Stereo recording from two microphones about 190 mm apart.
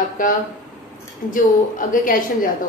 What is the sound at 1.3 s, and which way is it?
Speech, 45° left (ahead or behind).